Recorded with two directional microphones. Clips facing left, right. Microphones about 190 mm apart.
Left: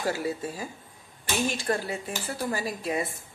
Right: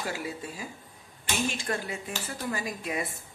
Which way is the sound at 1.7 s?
35° left (ahead or behind).